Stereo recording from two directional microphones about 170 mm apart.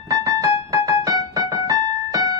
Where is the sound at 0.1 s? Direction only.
20° right (ahead or behind).